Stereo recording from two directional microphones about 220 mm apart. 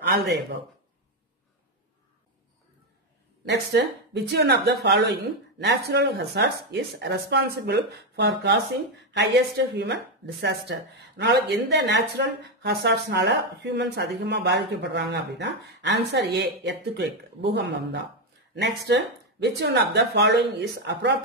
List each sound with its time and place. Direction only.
3.7 s a woman's voice: 50° right (ahead or behind)